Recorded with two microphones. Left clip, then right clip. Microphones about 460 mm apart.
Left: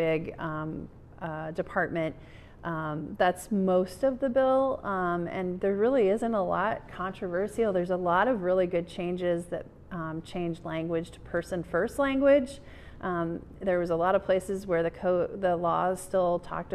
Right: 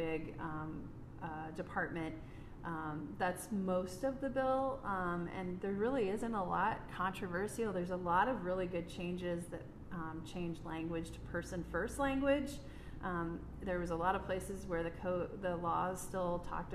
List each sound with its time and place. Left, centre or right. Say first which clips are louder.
0.0 s a woman's voice: left 12 dB; left